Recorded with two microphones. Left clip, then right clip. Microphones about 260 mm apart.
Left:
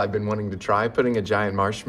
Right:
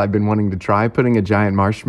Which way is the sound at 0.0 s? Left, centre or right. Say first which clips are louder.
Right 6 dB; right.